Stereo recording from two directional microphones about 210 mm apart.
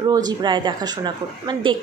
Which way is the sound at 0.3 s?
20° right (ahead or behind).